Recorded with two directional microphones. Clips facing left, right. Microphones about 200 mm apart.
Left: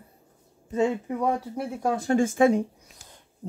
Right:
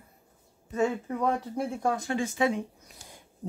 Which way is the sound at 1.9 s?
40° left (ahead or behind).